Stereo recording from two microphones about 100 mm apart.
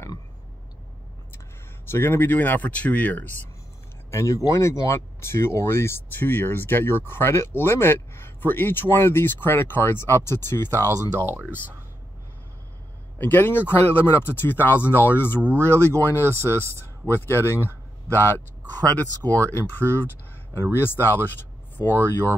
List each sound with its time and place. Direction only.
1.9 s speech: 25° left (ahead or behind)
4.1 s speech: 30° left (ahead or behind)
13.2 s speech: 20° left (ahead or behind)
15.4 s speech: 25° right (ahead or behind)
16.0 s speech: 20° left (ahead or behind)
16.3 s speech: 25° right (ahead or behind)
17.1 s speech: 25° left (ahead or behind)
18.9 s speech: 15° left (ahead or behind)